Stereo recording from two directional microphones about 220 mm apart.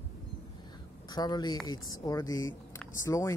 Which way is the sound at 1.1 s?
20° left (ahead or behind).